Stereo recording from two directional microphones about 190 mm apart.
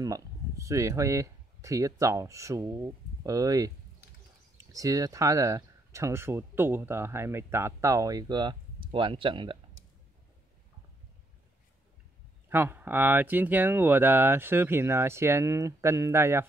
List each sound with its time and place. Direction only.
0.0 s speech: 15° right (ahead or behind)
4.7 s speech: 15° right (ahead or behind)
12.4 s speech: 10° right (ahead or behind)